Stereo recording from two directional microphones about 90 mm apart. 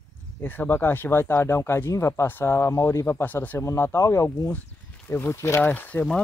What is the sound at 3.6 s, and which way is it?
Speech, 30° left (ahead or behind).